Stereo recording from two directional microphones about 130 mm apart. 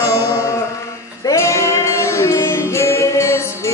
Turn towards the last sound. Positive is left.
turn(degrees=20)  # may be behind; listen again after turning